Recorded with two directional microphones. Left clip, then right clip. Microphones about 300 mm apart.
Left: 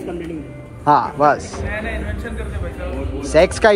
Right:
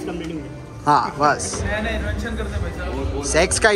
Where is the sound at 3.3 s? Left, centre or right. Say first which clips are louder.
Left 4 dB; centre.